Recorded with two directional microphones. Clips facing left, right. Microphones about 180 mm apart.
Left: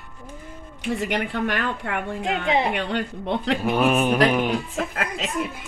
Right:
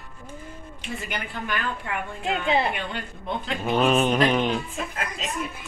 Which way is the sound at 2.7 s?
75° left (ahead or behind).